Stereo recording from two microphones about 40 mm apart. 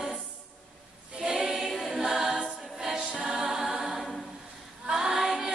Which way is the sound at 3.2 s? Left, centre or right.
Centre.